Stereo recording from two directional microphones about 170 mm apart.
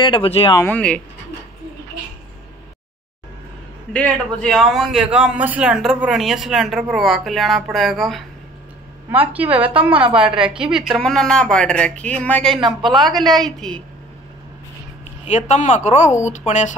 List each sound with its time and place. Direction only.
0.0 s speech: 30° left (ahead or behind)
0.6 s speech: 10° left (ahead or behind)
3.9 s a man's voice: 5° left (ahead or behind)
12.5 s a man's voice: 25° right (ahead or behind)
13.4 s a man's voice: 5° left (ahead or behind)
15.2 s a woman's voice: 45° left (ahead or behind)